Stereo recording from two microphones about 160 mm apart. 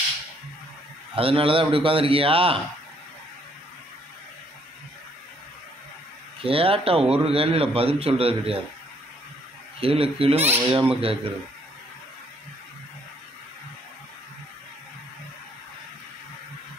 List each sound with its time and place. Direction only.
1.1 s a man's voice: 35° right (ahead or behind)
6.4 s a man's voice: 35° right (ahead or behind)
9.8 s a man's voice: 35° right (ahead or behind)